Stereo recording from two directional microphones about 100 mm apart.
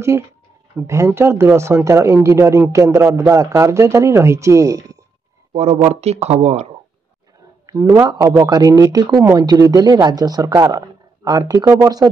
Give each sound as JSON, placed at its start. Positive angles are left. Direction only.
{"t": 0.8, "sound": "a man's voice", "side_deg": -30}
{"t": 5.5, "sound": "speech", "side_deg": -90}
{"t": 7.6, "sound": "a man's voice", "side_deg": -35}